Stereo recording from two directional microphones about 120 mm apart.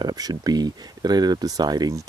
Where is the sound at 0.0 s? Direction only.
35° right (ahead or behind).